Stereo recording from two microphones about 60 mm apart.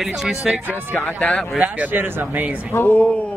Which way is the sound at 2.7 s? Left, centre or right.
Left.